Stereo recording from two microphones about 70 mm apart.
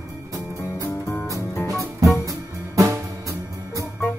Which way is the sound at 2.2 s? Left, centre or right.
Right.